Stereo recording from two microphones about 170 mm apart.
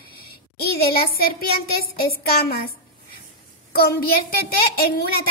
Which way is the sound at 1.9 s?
65° left (ahead or behind).